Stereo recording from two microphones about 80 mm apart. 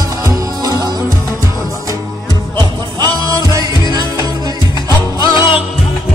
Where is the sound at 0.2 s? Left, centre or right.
Right.